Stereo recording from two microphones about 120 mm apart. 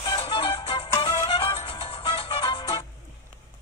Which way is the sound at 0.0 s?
45° left (ahead or behind).